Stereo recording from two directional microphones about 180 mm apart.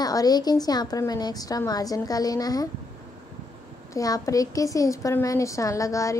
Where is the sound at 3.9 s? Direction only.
20° left (ahead or behind).